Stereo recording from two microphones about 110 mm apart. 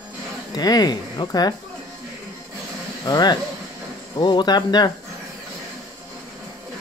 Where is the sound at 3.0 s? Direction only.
40° left (ahead or behind).